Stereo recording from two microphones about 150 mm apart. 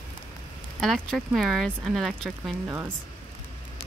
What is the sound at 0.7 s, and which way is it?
Speech, centre (ahead or behind).